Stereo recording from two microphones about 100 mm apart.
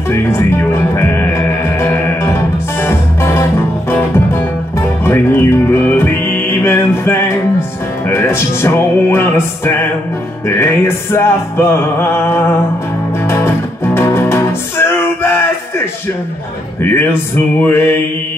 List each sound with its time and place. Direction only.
0.1 s music: 25° left (ahead or behind)
11.1 s music: 25° left (ahead or behind)
13.9 s music: 25° left (ahead or behind)
16.8 s music: 20° left (ahead or behind)